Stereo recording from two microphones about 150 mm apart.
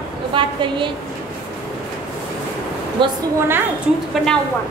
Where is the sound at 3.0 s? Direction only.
35° right (ahead or behind).